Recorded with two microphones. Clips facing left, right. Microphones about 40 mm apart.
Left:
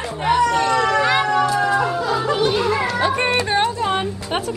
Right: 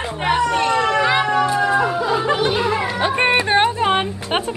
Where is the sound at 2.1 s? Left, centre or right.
Right.